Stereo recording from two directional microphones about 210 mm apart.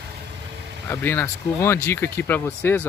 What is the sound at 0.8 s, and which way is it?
Speech, 10° left (ahead or behind).